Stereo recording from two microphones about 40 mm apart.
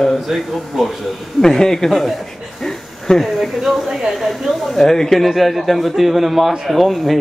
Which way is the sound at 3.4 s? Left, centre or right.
Centre.